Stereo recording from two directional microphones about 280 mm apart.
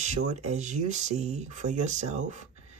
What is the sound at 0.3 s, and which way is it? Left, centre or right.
Speech, right.